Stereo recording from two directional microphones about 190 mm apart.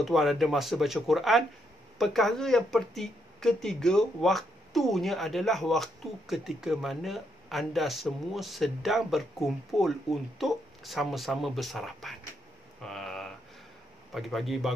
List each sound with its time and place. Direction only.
0.0 s speech: centre (ahead or behind)
12.8 s a sound: centre (ahead or behind)
14.1 s speech: centre (ahead or behind)